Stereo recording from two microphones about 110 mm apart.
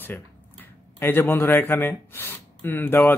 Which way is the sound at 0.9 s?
20° left (ahead or behind).